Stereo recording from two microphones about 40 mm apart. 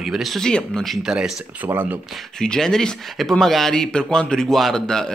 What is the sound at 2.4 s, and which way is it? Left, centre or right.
Speech, centre.